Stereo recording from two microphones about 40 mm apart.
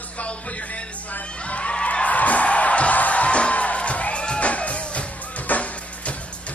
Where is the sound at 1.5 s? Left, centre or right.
Left.